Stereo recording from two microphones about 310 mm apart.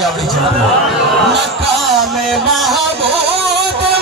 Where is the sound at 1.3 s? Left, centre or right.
Centre.